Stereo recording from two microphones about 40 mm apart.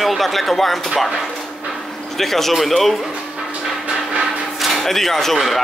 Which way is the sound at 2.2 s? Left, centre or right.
Centre.